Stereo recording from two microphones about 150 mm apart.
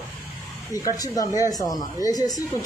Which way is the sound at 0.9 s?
25° left (ahead or behind).